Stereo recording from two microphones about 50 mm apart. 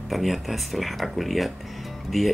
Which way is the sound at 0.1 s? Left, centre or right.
Centre.